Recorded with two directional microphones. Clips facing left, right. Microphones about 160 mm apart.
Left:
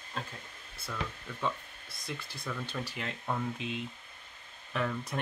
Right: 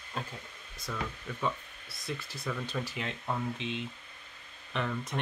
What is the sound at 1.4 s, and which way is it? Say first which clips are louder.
Speech: right 1 dB; centre (ahead or behind).